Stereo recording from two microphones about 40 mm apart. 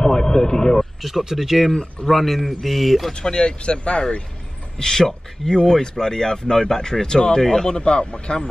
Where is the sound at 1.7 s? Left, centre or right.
Centre.